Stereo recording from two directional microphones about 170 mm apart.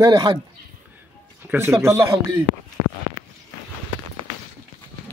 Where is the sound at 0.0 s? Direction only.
20° right (ahead or behind).